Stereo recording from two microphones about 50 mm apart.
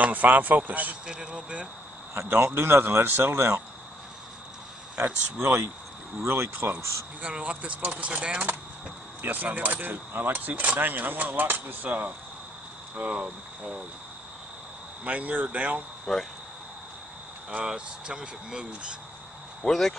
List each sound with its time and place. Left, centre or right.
0.0 s speech: right
1.0 s speech: centre
2.2 s speech: right
3.3 s speech: right
5.0 s speech: right
6.8 s speech: right
7.2 s speech: right
9.2 s speech: right
12.9 s speech: right
15.0 s speech: right
16.1 s speech: centre
17.6 s speech: centre
19.6 s speech: centre